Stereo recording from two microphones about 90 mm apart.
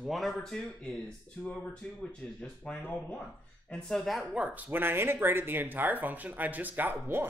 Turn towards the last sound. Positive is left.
turn(degrees=-25)  # may be behind; listen again after turning